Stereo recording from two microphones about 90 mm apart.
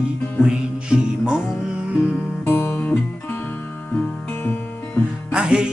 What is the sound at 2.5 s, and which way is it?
Music, 30° left (ahead or behind).